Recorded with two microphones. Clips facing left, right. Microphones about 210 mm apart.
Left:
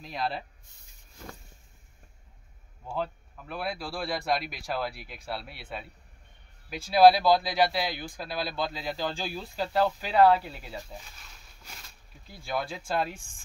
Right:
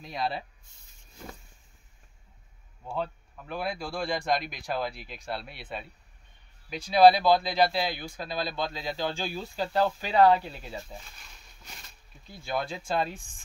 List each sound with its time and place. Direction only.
0.0 s a man's voice: centre (ahead or behind)
2.8 s a man's voice: centre (ahead or behind)
12.4 s a man's voice: 5° left (ahead or behind)